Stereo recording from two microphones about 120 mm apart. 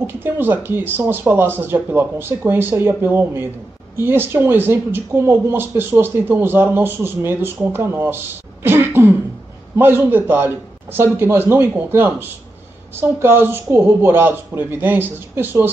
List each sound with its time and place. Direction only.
0.0 s a man's voice: 15° right (ahead or behind)